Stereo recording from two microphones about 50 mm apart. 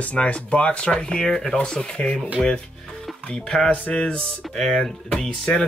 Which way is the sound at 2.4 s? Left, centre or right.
Centre.